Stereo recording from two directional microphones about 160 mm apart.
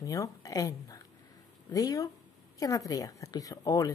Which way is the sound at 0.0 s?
20° left (ahead or behind).